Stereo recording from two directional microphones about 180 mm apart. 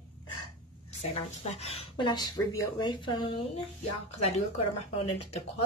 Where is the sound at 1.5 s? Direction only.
35° left (ahead or behind).